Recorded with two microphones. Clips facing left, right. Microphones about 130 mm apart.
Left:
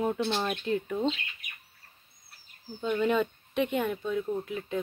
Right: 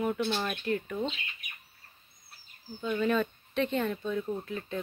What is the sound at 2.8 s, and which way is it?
Speech, 20° left (ahead or behind).